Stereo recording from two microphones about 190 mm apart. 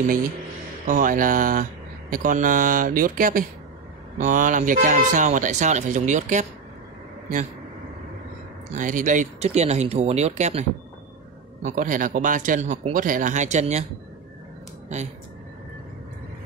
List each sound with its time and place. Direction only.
0.8 s speech: 45° right (ahead or behind)
8.7 s speech: 40° right (ahead or behind)
11.6 s speech: 45° right (ahead or behind)